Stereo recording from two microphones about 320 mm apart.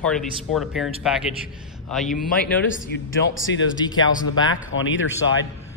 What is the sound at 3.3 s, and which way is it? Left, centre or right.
Speech, left.